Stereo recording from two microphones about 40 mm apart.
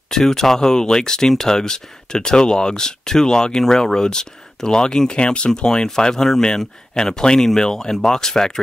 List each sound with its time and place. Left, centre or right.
0.1 s speech: centre